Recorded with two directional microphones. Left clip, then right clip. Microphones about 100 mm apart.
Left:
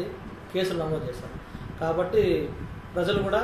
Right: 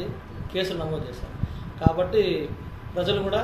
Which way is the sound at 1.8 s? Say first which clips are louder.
Right 1 dB; centre (ahead or behind).